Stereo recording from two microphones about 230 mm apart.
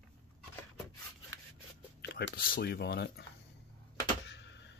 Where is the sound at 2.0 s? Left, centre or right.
Left.